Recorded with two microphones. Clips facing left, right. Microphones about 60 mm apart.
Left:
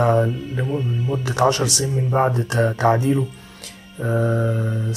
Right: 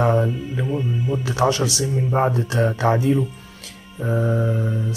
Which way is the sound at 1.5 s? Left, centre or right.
Left.